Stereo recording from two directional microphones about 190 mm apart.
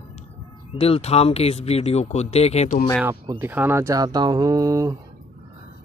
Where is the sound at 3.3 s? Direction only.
10° right (ahead or behind).